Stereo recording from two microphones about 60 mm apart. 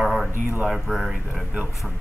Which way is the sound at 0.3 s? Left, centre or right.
Right.